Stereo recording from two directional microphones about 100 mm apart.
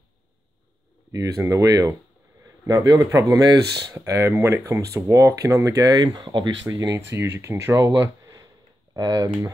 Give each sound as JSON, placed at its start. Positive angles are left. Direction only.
{"t": 1.1, "sound": "speech", "side_deg": -35}
{"t": 7.1, "sound": "speech", "side_deg": -25}
{"t": 8.0, "sound": "a sound", "side_deg": -35}
{"t": 8.9, "sound": "speech", "side_deg": -40}